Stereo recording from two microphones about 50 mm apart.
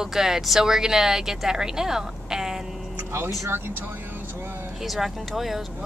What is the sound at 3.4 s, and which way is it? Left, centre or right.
Speech, right.